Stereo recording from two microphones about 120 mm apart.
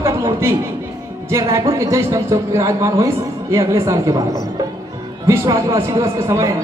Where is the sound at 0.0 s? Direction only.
20° right (ahead or behind).